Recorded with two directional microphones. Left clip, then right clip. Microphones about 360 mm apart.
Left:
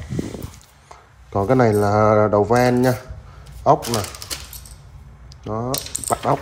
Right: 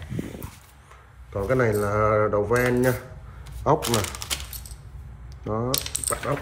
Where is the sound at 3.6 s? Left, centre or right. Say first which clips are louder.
Left 5 dB; centre.